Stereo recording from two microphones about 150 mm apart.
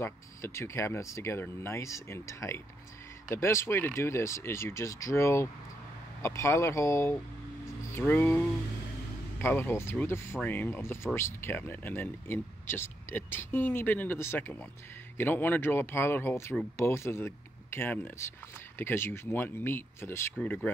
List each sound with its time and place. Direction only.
0.0 s speech: 20° left (ahead or behind)